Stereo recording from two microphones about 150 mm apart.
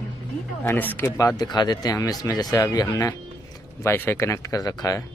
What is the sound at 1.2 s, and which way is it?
Speech, 25° left (ahead or behind).